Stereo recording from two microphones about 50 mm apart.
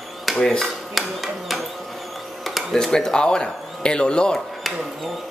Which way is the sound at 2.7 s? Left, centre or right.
Centre.